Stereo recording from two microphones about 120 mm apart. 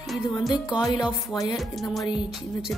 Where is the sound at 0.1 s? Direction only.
Centre (ahead or behind).